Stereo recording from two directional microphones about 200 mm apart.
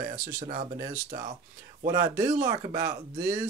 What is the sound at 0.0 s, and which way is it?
Speech, 45° right (ahead or behind).